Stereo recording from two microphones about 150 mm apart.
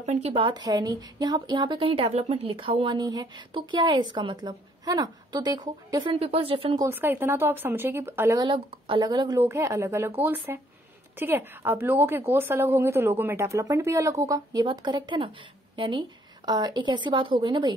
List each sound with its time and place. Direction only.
0.0 s a woman's voice: 50° right (ahead or behind)
6.8 s speech: 15° right (ahead or behind)
8.4 s a woman's voice: 35° right (ahead or behind)
9.4 s a woman's voice: 15° right (ahead or behind)